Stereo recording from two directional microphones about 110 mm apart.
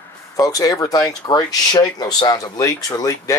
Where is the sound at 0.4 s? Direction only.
35° left (ahead or behind).